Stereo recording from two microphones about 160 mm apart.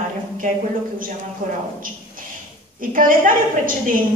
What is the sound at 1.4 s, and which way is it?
Speech, 50° right (ahead or behind).